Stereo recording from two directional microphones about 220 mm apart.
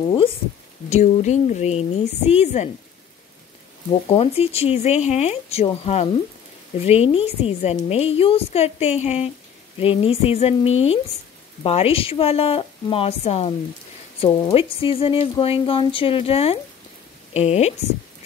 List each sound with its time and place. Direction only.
0.8 s a woman's voice: 30° left (ahead or behind)
3.9 s a woman's voice: 25° left (ahead or behind)
10.7 s speech: 65° left (ahead or behind)
11.6 s a woman's voice: 25° left (ahead or behind)